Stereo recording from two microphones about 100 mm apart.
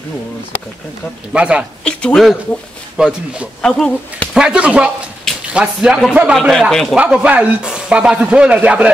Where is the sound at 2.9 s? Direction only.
10° right (ahead or behind).